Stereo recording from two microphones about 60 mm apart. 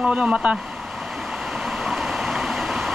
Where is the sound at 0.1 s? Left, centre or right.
Centre.